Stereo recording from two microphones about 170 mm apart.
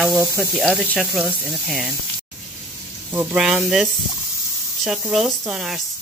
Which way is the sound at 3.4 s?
5° right (ahead or behind).